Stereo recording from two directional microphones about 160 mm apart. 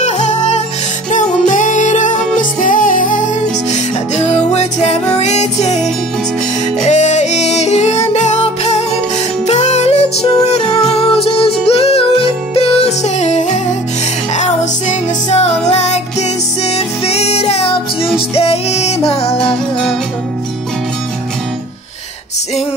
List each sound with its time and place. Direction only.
0.0 s music: 45° left (ahead or behind)